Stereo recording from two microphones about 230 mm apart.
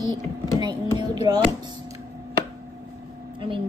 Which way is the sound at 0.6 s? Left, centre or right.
Centre.